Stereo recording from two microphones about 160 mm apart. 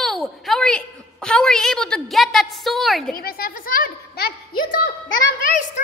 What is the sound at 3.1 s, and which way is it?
Speech, 70° left (ahead or behind).